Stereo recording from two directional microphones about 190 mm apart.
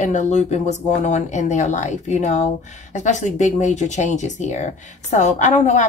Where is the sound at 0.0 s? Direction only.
40° left (ahead or behind).